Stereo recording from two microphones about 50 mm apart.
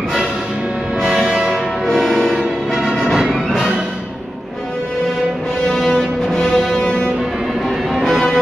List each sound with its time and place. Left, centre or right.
1.0 s music: centre
1.9 s music: centre
2.9 s music: centre
5.7 s music: centre
7.9 s music: centre